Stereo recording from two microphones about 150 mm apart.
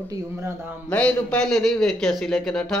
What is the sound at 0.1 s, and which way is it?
Speech, 15° right (ahead or behind).